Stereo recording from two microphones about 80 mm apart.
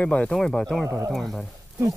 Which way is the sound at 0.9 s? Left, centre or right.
Right.